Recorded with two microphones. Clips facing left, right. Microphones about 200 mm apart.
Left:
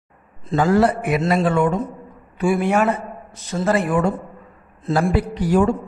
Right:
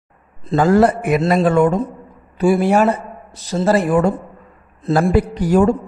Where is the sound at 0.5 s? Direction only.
45° right (ahead or behind).